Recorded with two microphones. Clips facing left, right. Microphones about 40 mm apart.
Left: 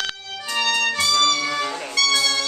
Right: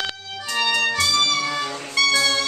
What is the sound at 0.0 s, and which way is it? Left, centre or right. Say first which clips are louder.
Music: even; centre.